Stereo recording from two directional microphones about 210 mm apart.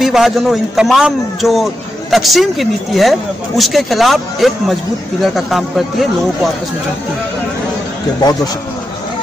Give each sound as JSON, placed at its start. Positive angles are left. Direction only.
{"t": 0.0, "sound": "a man's voice", "side_deg": 0}